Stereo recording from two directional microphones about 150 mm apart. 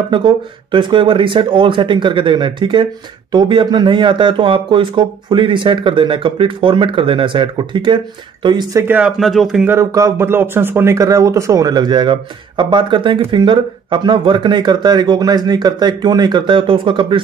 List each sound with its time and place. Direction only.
0.1 s speech: 30° right (ahead or behind)
8.8 s speech: 10° right (ahead or behind)
9.2 s speech: centre (ahead or behind)
9.7 s speech: 20° right (ahead or behind)